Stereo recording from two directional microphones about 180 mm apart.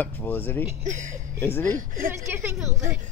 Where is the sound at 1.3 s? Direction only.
10° left (ahead or behind).